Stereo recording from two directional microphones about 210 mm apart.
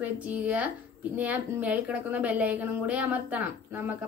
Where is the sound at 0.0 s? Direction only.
5° right (ahead or behind).